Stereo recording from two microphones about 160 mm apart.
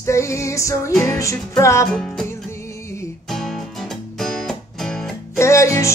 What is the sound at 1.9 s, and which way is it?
Music, 5° left (ahead or behind).